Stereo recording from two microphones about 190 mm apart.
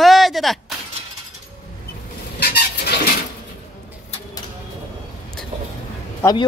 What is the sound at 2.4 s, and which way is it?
Vehicle, 55° left (ahead or behind).